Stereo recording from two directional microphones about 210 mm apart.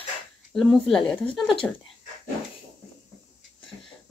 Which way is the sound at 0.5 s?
Centre (ahead or behind).